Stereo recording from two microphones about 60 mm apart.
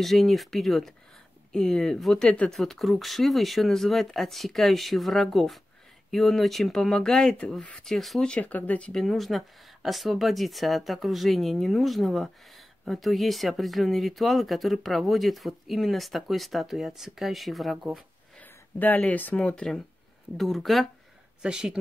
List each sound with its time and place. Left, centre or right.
0.0 s speech: centre
2.2 s speech: left
2.5 s speech: centre
8.3 s speech: left
8.9 s speech: centre
18.4 s a sound: left
19.0 s speech: left
19.3 s speech: centre
20.3 s speech: centre
21.4 s speech: centre